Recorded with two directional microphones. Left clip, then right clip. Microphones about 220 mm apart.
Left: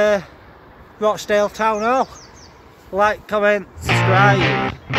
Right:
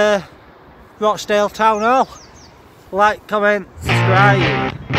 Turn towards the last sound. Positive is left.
turn(degrees=0)  # may be behind; listen again after turning